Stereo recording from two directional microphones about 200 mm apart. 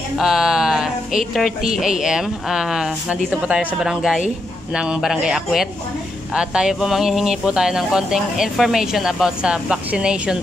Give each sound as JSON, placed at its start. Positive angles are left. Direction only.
{"t": 0.2, "sound": "speech", "side_deg": 0}